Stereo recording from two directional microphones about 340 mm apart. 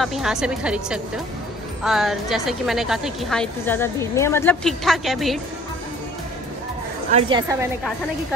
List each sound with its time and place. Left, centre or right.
0.0 s a woman's voice: centre
7.1 s a woman's voice: centre